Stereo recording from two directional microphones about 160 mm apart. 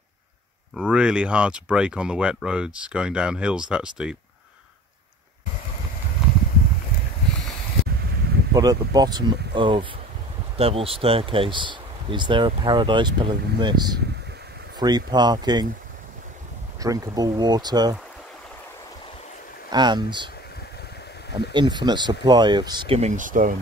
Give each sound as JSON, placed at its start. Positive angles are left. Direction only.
{"t": 0.7, "sound": "speech", "side_deg": -5}
{"t": 8.5, "sound": "speech", "side_deg": -25}
{"t": 16.8, "sound": "speech", "side_deg": -20}
{"t": 19.7, "sound": "speech", "side_deg": -25}
{"t": 21.5, "sound": "speech", "side_deg": -30}
{"t": 22.9, "sound": "speech", "side_deg": -50}